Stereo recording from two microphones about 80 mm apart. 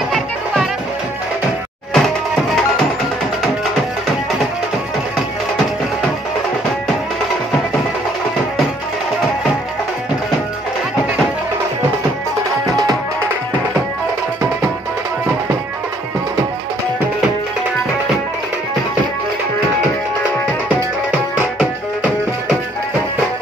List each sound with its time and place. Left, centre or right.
2.0 s music: centre
20.6 s music: centre